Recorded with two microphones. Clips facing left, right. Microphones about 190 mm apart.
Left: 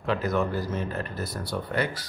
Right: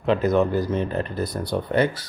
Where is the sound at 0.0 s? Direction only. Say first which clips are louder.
Right 6 dB; 20° right (ahead or behind).